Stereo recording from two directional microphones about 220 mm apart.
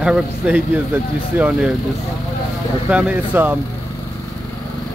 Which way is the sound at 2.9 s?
5° right (ahead or behind).